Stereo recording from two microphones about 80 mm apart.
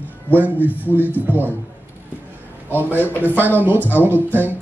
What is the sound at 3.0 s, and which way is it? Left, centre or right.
Speech, left.